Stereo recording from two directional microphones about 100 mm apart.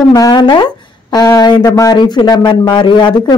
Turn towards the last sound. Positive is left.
turn(degrees=50)  # may be behind; listen again after turning